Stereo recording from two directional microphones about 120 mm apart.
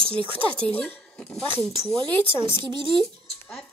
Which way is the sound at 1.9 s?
45° right (ahead or behind).